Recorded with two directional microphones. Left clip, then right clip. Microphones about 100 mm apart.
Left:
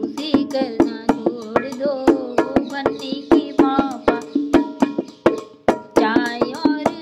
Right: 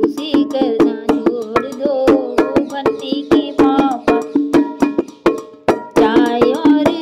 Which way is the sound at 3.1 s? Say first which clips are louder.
Right 3 dB; 35° right (ahead or behind).